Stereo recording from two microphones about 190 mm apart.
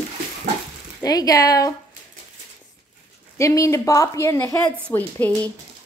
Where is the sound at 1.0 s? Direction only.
20° left (ahead or behind).